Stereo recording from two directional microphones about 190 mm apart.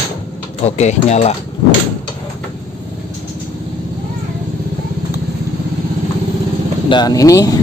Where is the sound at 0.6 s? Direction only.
35° left (ahead or behind).